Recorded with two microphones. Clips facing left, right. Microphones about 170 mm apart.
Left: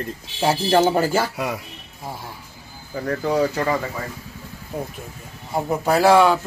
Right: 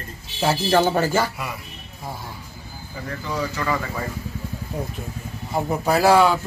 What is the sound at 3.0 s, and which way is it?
Speech, 55° left (ahead or behind).